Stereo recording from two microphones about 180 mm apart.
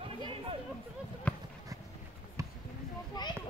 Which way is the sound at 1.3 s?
5° left (ahead or behind).